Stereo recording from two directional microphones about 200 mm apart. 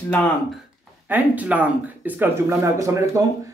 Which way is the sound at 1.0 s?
10° right (ahead or behind).